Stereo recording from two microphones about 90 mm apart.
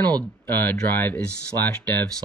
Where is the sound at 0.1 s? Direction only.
20° left (ahead or behind).